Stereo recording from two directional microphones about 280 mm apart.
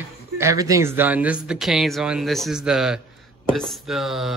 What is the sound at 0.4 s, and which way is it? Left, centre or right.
Speech, centre.